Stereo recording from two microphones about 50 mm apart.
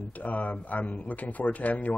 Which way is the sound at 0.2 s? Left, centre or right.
Left.